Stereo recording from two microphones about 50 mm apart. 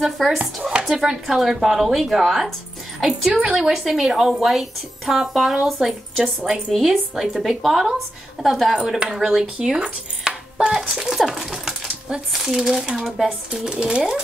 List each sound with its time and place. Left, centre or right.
0.0 s a woman's voice: centre
13.7 s a woman's voice: centre